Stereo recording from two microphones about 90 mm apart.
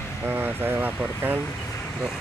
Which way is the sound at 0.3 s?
25° right (ahead or behind).